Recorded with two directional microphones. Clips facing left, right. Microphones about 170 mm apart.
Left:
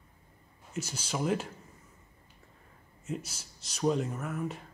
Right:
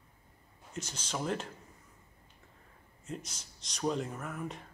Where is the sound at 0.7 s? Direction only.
10° left (ahead or behind).